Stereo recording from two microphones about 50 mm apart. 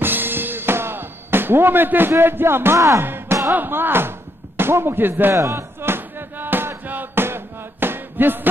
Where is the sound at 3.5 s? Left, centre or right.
Right.